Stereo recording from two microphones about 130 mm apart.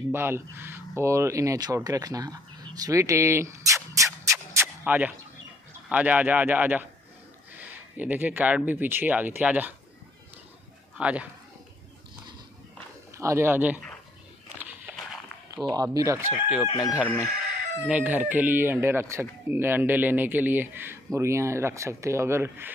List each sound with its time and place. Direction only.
0.1 s speech: 20° right (ahead or behind)
4.8 s speech: 10° right (ahead or behind)
8.0 s speech: 15° right (ahead or behind)
11.0 s speech: 10° right (ahead or behind)
13.1 s speech: 20° right (ahead or behind)
15.0 s a sound: 5° left (ahead or behind)
15.7 s speech: 30° right (ahead or behind)
16.6 s chicken: 35° left (ahead or behind)
17.8 s speech: 10° right (ahead or behind)